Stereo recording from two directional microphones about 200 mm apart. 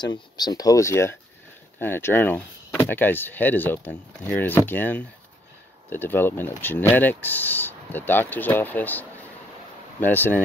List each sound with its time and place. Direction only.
0.0 s speech: 20° left (ahead or behind)